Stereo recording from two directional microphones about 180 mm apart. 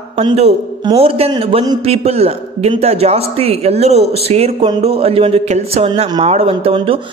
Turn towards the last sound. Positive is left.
turn(degrees=-30)  # may be behind; listen again after turning